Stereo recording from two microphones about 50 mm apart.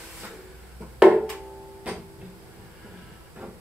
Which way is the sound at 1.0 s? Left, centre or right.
Centre.